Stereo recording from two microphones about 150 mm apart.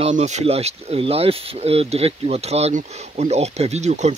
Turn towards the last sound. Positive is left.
turn(degrees=-50)  # may be behind; listen again after turning